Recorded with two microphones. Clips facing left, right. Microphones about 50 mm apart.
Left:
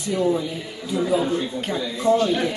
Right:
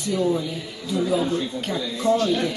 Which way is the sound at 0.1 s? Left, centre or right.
Centre.